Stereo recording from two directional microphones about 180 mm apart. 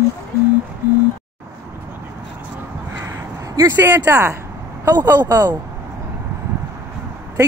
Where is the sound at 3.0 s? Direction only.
15° right (ahead or behind).